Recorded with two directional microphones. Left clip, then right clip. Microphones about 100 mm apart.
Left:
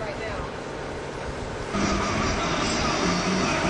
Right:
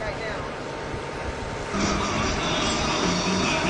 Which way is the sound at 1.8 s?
Centre (ahead or behind).